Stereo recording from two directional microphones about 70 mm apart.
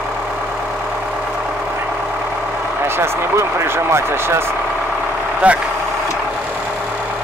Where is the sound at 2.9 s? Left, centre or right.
Right.